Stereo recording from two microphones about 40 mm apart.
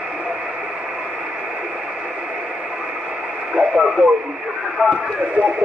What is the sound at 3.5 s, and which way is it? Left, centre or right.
Radio, centre.